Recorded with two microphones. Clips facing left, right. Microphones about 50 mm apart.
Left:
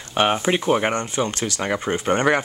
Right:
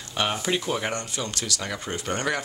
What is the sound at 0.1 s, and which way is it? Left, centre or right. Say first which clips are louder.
Speech: left 7 dB; left.